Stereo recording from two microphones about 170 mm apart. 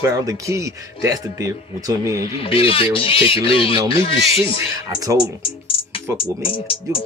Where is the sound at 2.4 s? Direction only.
30° left (ahead or behind).